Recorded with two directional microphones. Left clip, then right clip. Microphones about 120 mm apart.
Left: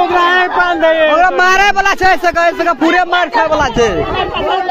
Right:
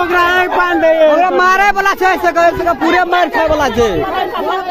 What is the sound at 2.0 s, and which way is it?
Speech, 75° left (ahead or behind).